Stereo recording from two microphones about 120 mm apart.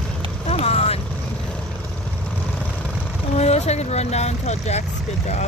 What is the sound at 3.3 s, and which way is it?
Speech, 65° left (ahead or behind).